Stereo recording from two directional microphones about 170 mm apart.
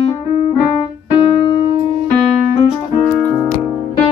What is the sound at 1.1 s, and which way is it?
Piano, 25° left (ahead or behind).